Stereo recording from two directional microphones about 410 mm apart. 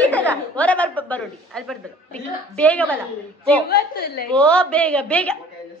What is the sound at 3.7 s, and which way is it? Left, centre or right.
Speech, left.